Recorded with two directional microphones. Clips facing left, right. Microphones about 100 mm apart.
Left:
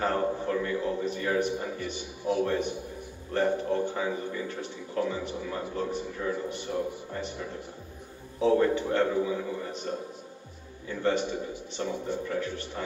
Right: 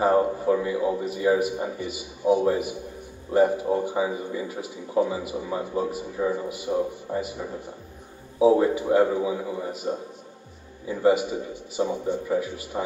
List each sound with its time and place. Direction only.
0.0 s speech: 15° right (ahead or behind)